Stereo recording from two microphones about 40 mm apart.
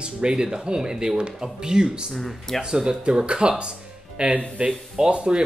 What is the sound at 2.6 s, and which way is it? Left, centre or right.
Speech, centre.